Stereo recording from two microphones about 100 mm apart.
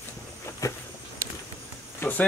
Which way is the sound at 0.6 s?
35° left (ahead or behind).